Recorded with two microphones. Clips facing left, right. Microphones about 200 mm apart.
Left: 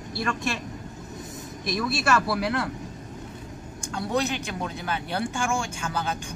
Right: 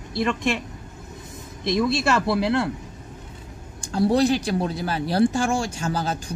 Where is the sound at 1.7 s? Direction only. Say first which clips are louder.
Right 4 dB; 20° right (ahead or behind).